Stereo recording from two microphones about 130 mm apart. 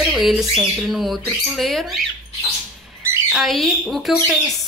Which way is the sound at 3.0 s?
20° right (ahead or behind).